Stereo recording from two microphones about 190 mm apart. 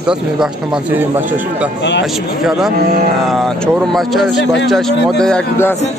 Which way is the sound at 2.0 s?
Centre (ahead or behind).